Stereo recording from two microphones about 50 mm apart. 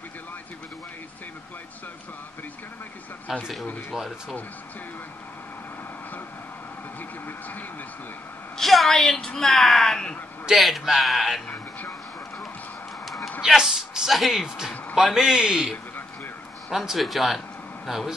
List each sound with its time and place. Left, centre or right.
3.3 s a man's voice: centre
7.0 s speech: left
8.5 s a woman's voice: centre
10.5 s speech: centre
11.4 s a sound: left
13.0 s a sound: centre
13.4 s a sound: centre
14.1 s speech: centre
15.1 s a man's voice: centre
16.7 s speech: centre